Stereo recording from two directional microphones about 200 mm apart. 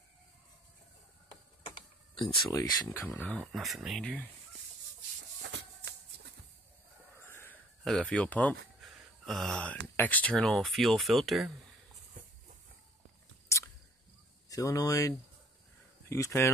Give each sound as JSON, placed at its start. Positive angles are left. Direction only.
{"t": 2.5, "sound": "speech", "side_deg": 15}
{"t": 5.4, "sound": "shuffle", "side_deg": -60}
{"t": 7.2, "sound": "a sound", "side_deg": 10}
{"t": 9.9, "sound": "speech", "side_deg": 10}
{"t": 13.5, "sound": "a sound", "side_deg": 15}
{"t": 14.5, "sound": "speech", "side_deg": 15}